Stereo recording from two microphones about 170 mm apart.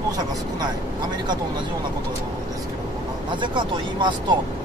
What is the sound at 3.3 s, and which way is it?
Speech, 25° right (ahead or behind).